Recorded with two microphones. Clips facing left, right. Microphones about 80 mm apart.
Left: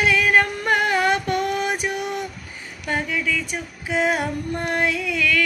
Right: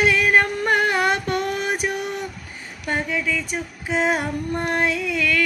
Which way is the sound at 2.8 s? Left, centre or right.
Right.